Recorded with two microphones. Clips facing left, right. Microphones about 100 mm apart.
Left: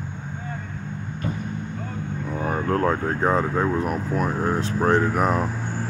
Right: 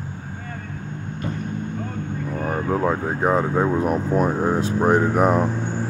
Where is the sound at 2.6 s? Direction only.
5° right (ahead or behind).